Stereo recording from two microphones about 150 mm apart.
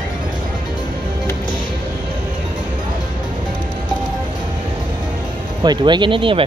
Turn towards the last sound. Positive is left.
turn(degrees=-35)  # may be behind; listen again after turning